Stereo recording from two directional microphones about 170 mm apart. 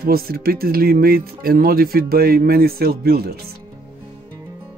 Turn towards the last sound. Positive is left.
turn(degrees=-65)  # may be behind; listen again after turning